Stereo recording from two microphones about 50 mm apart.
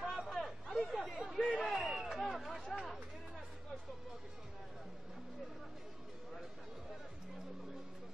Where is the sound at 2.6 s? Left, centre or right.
Left.